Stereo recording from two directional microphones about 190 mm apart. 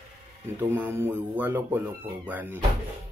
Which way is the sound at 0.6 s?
10° right (ahead or behind).